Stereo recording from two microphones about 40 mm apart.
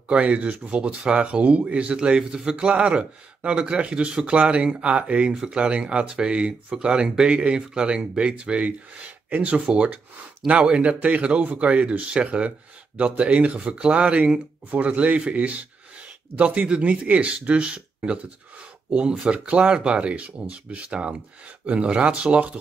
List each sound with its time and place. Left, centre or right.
0.1 s speech: right
10.8 s speech: right